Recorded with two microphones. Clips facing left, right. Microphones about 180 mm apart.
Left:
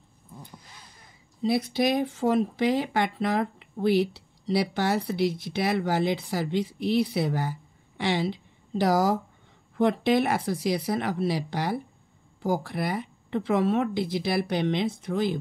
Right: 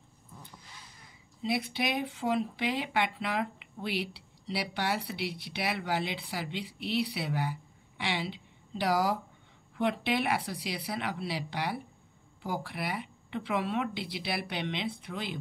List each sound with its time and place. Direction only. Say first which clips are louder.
1.4 s speech: left 7 dB; 40° left (ahead or behind)